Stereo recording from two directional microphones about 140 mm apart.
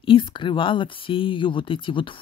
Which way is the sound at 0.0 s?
35° left (ahead or behind).